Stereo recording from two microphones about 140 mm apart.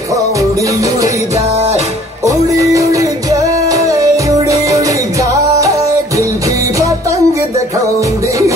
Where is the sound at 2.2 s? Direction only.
25° right (ahead or behind).